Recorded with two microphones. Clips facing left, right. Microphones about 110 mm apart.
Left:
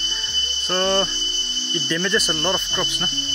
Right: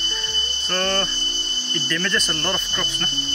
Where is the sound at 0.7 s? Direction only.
15° left (ahead or behind).